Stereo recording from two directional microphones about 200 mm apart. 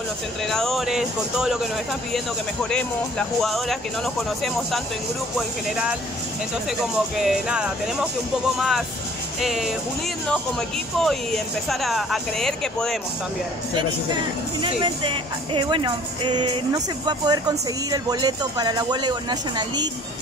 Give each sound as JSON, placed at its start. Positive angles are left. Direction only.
{"t": 0.5, "sound": "speech", "side_deg": 0}
{"t": 2.7, "sound": "speech", "side_deg": 5}
{"t": 7.2, "sound": "speech", "side_deg": -5}
{"t": 11.0, "sound": "speech", "side_deg": 0}
{"t": 14.6, "sound": "speech", "side_deg": -25}